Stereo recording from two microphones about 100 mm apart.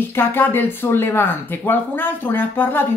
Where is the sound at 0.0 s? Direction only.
20° left (ahead or behind).